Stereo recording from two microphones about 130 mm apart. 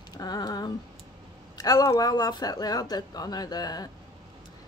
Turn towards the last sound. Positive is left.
turn(degrees=30)  # may be behind; listen again after turning